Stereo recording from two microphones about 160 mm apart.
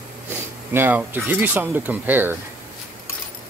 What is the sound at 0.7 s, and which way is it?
Speech, 10° right (ahead or behind).